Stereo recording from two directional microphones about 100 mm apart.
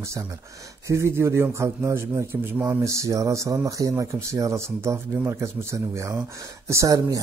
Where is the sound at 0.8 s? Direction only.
30° right (ahead or behind).